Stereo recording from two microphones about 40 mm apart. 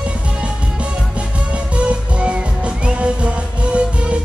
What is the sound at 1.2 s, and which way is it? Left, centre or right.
Music, right.